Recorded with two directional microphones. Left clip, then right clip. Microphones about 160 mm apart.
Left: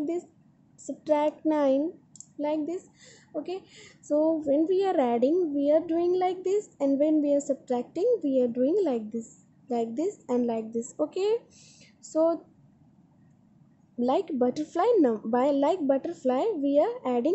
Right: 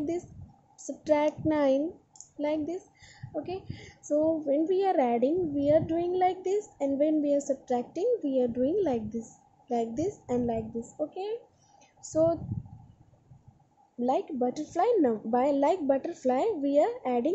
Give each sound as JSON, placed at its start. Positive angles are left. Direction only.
{"t": 0.8, "sound": "a woman's voice", "side_deg": 5}
{"t": 10.8, "sound": "speech", "side_deg": 25}
{"t": 12.1, "sound": "a woman's voice", "side_deg": 10}
{"t": 13.9, "sound": "a woman's voice", "side_deg": 15}